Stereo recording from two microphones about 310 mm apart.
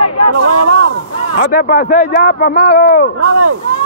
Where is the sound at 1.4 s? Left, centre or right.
Left.